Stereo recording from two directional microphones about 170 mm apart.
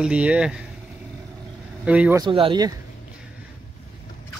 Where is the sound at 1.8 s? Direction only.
10° right (ahead or behind).